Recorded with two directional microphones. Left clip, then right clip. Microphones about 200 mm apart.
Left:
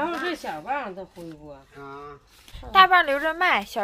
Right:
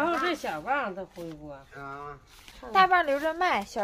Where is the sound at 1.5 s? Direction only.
25° right (ahead or behind).